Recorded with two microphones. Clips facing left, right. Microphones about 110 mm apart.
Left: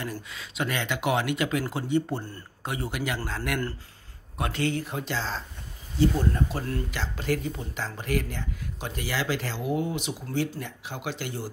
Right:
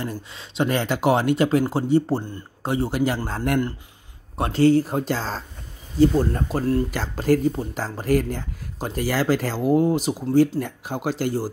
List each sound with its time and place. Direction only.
0.0 s speech: 30° right (ahead or behind)